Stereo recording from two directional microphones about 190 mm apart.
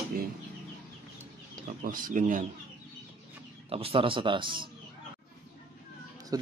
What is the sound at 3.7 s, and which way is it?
Speech, 30° right (ahead or behind).